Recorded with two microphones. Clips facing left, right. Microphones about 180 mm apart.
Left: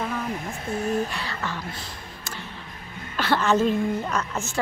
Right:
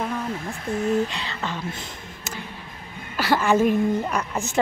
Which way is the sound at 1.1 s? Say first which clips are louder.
Right 1 dB; 20° right (ahead or behind).